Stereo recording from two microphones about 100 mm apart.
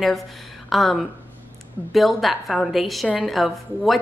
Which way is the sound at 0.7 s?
Centre (ahead or behind).